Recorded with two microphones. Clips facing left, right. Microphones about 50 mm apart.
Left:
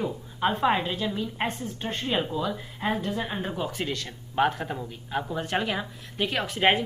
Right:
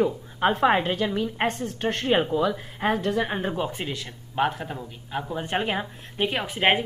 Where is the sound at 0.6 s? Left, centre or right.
Right.